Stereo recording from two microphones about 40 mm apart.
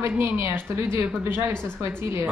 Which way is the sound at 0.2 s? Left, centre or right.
Right.